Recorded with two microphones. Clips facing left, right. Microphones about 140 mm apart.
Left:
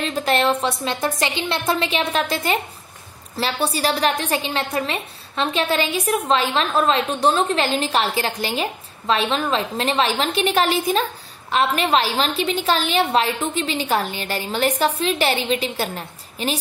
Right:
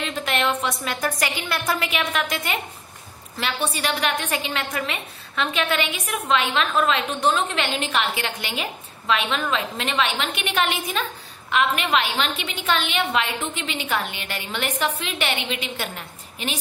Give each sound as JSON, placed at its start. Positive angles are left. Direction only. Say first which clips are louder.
{"t": 0.0, "sound": "a woman's voice", "louder": "left 5 dB", "side_deg": 35}